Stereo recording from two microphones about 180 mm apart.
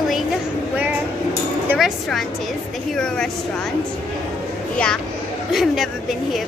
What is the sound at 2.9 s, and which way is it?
Speech, 5° left (ahead or behind).